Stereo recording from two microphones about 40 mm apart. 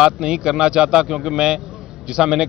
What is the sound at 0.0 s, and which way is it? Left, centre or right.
A man's voice, centre.